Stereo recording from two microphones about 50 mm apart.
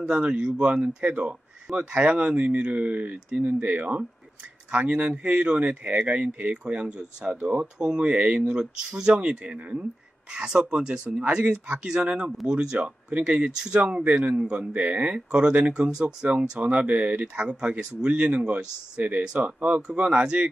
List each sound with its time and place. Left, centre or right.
0.0 s speech: right
19.3 s speech: right
19.9 s speech: centre